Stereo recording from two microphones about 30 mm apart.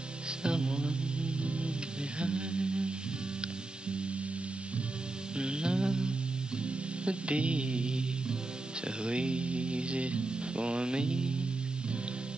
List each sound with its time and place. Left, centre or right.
0.4 s music: right
2.1 s a sound: right
5.4 s music: right
7.1 s music: right
8.8 s speech: right